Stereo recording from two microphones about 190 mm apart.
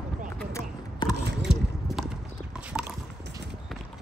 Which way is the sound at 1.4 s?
Centre (ahead or behind).